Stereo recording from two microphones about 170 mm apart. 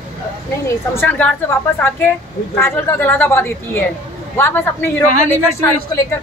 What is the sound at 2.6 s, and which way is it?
A woman's voice, 15° left (ahead or behind).